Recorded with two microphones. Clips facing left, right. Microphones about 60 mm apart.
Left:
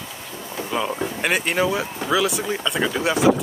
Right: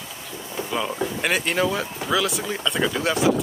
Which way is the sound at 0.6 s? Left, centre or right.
Centre.